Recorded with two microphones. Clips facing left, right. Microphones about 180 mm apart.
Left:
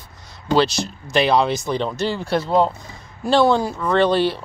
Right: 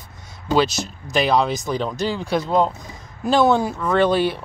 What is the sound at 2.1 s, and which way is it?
Speech, 15° right (ahead or behind).